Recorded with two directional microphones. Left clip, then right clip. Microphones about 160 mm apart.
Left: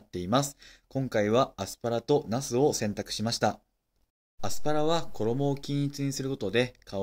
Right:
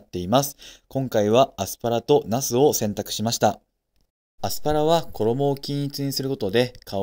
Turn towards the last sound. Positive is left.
turn(degrees=-35)  # may be behind; listen again after turning